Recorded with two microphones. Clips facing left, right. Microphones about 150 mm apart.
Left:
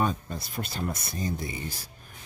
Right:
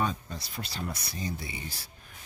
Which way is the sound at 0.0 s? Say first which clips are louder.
Left 3 dB; 50° left (ahead or behind).